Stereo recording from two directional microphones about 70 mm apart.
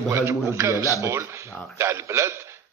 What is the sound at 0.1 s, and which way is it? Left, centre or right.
A man's voice, right.